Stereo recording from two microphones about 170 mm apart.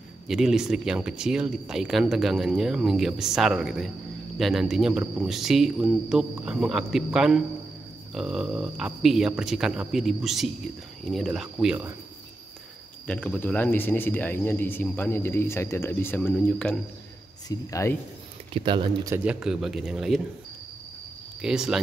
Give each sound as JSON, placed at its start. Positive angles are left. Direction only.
{"t": 0.3, "sound": "speech", "side_deg": -5}
{"t": 13.0, "sound": "speech", "side_deg": 5}
{"t": 18.5, "sound": "speech", "side_deg": -30}
{"t": 19.1, "sound": "speech", "side_deg": -5}
{"t": 21.4, "sound": "speech", "side_deg": -5}